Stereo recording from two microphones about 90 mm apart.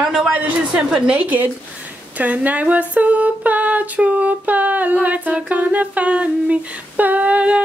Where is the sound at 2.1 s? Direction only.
15° right (ahead or behind).